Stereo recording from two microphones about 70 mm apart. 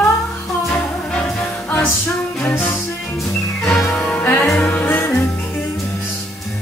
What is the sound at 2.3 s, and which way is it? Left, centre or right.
Music, left.